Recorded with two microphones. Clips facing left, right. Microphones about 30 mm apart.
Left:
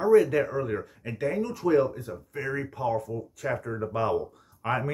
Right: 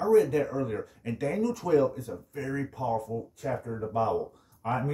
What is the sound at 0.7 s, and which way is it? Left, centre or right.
Speech, left.